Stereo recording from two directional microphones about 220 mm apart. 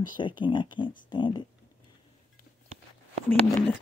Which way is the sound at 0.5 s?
20° left (ahead or behind).